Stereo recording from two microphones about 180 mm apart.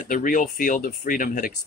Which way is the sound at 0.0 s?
50° left (ahead or behind).